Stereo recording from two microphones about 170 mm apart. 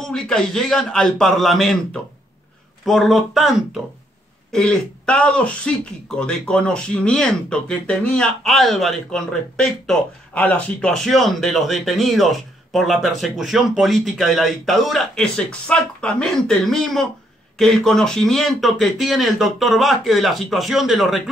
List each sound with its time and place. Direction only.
0.0 s speech: 5° left (ahead or behind)
2.8 s speech: centre (ahead or behind)